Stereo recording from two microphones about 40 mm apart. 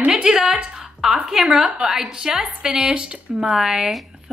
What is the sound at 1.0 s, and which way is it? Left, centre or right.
Speech, centre.